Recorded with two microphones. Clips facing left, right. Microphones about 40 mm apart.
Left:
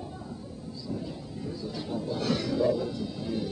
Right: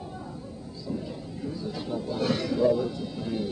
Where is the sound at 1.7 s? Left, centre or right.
Centre.